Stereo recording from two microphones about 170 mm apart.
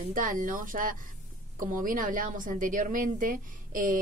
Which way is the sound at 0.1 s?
55° right (ahead or behind).